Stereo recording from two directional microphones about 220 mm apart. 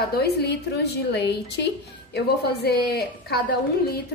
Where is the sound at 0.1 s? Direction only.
50° left (ahead or behind).